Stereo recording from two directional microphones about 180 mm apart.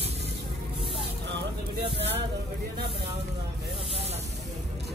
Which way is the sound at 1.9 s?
35° right (ahead or behind).